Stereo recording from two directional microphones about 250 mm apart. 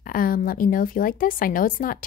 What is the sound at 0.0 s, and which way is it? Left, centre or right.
A woman's voice, left.